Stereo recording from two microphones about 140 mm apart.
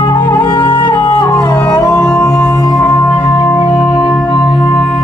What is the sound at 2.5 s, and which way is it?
Music, 30° left (ahead or behind).